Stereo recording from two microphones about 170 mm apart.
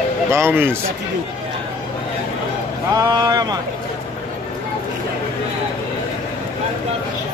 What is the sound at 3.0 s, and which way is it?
Speech, 20° right (ahead or behind).